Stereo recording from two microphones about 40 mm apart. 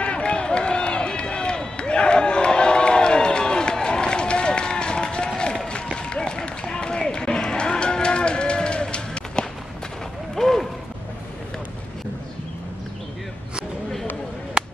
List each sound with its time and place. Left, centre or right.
0.0 s run: left
5.7 s a sound: left
10.3 s mechanisms: centre